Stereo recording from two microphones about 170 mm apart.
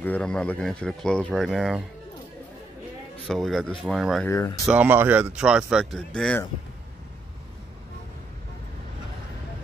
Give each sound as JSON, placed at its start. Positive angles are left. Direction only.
{"t": 0.0, "sound": "speech", "side_deg": 5}
{"t": 3.3, "sound": "speech", "side_deg": 0}
{"t": 4.3, "sound": "speech", "side_deg": 20}
{"t": 4.6, "sound": "speech", "side_deg": -10}